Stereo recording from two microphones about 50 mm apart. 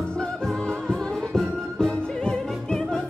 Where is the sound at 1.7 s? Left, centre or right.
Centre.